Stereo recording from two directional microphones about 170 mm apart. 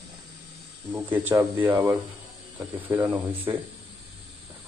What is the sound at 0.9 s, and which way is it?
Speech, 15° right (ahead or behind).